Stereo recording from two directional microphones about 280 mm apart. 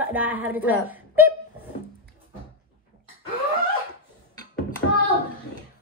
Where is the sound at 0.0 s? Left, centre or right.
Centre.